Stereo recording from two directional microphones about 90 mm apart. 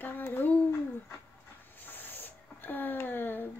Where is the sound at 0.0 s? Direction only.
20° left (ahead or behind).